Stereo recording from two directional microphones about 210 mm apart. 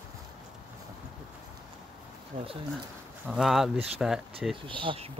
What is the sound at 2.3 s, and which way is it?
Speech, 30° right (ahead or behind).